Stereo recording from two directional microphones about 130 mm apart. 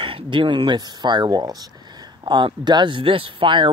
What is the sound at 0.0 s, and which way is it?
Speech, 40° right (ahead or behind).